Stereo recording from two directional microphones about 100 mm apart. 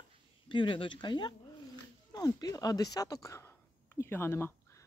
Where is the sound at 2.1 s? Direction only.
35° left (ahead or behind).